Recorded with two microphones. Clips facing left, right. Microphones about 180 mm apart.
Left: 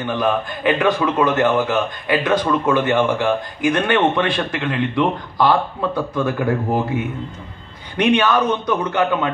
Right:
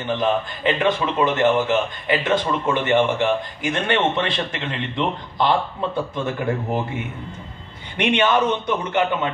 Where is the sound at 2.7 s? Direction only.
50° left (ahead or behind).